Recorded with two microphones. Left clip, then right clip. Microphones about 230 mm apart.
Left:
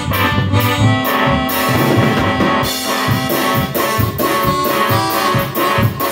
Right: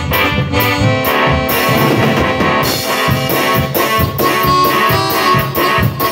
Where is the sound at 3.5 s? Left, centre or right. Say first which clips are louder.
Right 3 dB; right.